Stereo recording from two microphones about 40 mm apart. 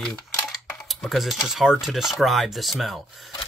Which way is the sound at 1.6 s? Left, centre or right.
Centre.